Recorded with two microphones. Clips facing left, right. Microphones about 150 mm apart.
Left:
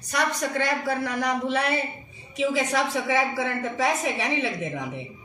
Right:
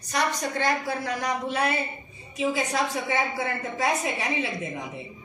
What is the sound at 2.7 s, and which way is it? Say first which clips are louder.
A woman's voice: left 2 dB; 85° left.